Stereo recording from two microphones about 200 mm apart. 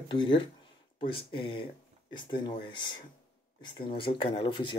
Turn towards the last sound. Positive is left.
turn(degrees=25)  # may be behind; listen again after turning